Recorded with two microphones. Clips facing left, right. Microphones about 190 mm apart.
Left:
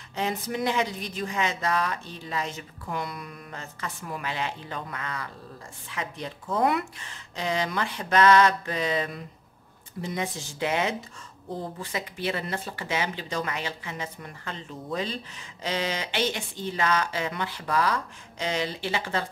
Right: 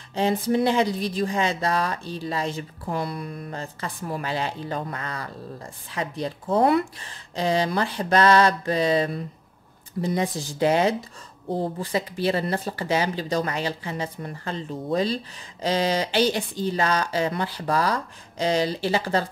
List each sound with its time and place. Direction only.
0.1 s speech: 30° right (ahead or behind)